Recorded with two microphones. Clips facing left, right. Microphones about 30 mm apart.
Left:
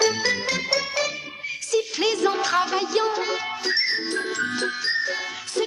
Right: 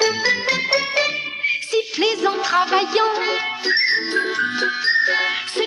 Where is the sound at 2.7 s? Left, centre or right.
Right.